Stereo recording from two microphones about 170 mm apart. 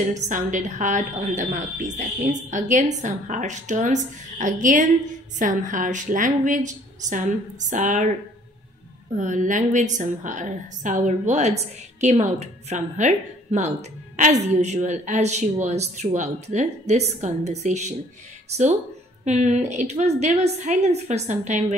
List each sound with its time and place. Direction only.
0.5 s a woman's voice: 45° right (ahead or behind)
9.1 s a woman's voice: 45° right (ahead or behind)
19.2 s a woman's voice: 45° right (ahead or behind)